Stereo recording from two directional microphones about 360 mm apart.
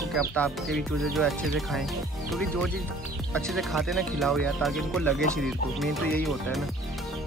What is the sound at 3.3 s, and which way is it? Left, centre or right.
Speech, centre.